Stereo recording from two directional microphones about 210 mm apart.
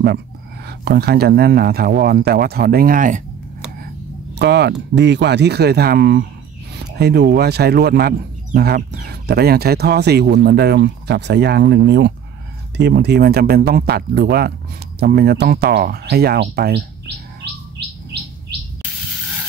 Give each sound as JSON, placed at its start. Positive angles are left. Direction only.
{"t": 0.7, "sound": "speech", "side_deg": -50}
{"t": 4.4, "sound": "speech", "side_deg": -55}